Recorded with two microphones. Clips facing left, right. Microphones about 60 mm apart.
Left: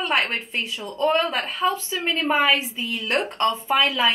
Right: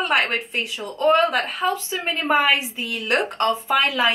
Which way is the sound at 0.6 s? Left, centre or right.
Right.